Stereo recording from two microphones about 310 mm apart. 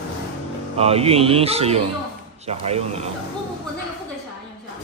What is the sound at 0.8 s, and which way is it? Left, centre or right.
Speech, centre.